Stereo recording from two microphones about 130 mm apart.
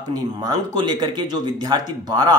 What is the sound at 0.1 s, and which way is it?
Speech, 30° right (ahead or behind).